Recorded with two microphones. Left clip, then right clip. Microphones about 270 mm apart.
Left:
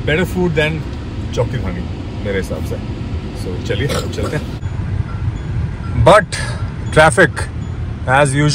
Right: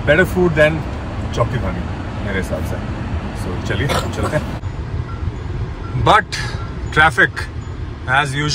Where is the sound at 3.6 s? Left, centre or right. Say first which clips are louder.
Even; centre.